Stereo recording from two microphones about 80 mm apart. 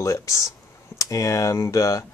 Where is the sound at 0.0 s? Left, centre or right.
Left.